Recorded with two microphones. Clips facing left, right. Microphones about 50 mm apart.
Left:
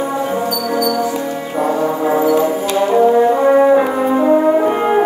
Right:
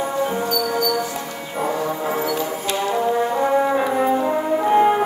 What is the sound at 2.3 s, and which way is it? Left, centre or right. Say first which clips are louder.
Brass instrument: left 9 dB; left.